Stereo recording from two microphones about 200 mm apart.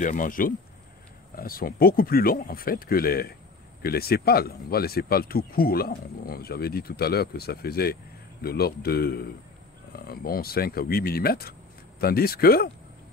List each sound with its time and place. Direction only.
0.0 s speech: 40° left (ahead or behind)